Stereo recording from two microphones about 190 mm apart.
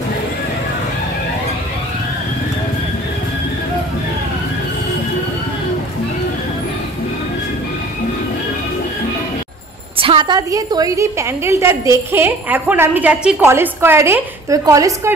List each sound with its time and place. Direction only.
9.9 s a woman's voice: 30° right (ahead or behind)